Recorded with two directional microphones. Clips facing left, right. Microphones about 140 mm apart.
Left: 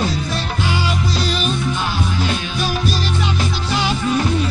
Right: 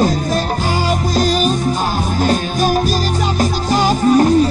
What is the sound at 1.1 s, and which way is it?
Music, 45° right (ahead or behind).